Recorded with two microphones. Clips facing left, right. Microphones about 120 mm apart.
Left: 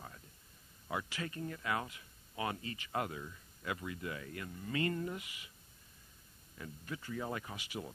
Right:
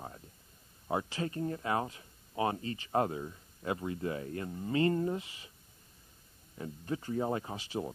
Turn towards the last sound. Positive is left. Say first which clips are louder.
# right 7 dB
turn(degrees=-35)  # may be behind; listen again after turning